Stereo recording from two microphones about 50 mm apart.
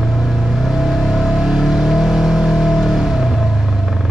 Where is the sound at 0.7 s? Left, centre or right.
Centre.